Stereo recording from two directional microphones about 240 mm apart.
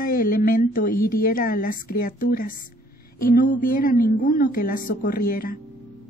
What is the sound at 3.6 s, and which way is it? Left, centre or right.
A woman's voice, left.